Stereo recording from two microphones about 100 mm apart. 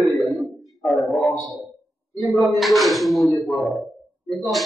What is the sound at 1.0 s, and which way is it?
Speech, 10° left (ahead or behind).